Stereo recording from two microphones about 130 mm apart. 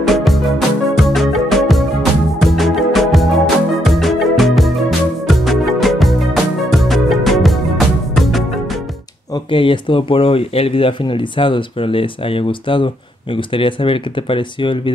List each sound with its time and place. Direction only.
0.0 s music: centre (ahead or behind)
9.5 s speech: 40° left (ahead or behind)